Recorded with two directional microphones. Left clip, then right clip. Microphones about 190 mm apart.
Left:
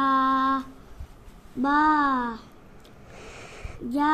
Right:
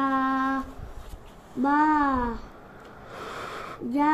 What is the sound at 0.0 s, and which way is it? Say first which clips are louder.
Humming: left 3 dB; 15° left (ahead or behind).